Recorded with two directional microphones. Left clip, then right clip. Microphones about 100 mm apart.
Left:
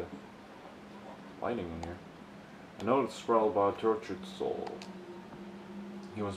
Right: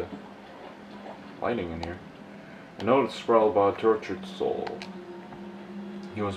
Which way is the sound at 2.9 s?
5° left (ahead or behind).